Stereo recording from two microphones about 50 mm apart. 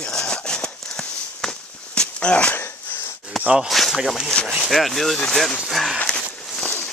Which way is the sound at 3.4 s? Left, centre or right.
Centre.